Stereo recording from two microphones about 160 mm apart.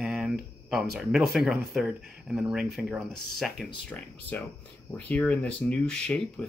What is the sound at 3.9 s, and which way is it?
Speech, 10° left (ahead or behind).